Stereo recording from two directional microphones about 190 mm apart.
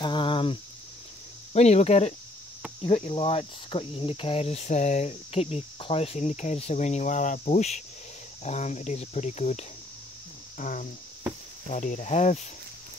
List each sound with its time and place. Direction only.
0.0 s a sound: 25° left (ahead or behind)
1.5 s speech: 35° left (ahead or behind)
10.6 s cricket: 45° left (ahead or behind)
11.7 s speech: 40° left (ahead or behind)